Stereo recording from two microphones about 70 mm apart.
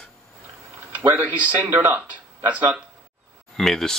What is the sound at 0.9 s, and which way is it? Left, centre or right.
Speech, right.